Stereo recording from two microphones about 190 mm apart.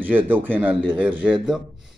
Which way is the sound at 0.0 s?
10° right (ahead or behind).